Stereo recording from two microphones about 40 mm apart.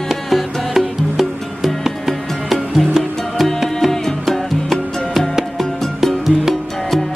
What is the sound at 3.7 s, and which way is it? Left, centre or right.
Music, centre.